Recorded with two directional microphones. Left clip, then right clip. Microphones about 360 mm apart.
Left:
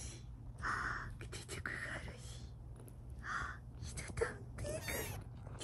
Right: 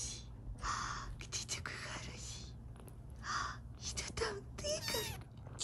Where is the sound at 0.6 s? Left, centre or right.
Centre.